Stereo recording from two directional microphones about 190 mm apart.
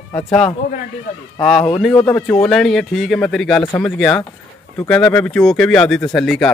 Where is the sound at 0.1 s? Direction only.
5° left (ahead or behind).